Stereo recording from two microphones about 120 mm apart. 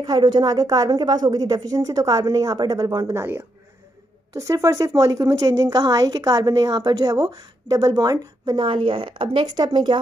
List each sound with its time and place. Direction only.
0.0 s a woman's voice: 35° right (ahead or behind)
8.6 s speech: 45° right (ahead or behind)